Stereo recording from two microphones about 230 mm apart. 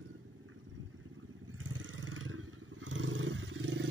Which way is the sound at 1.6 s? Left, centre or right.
Right.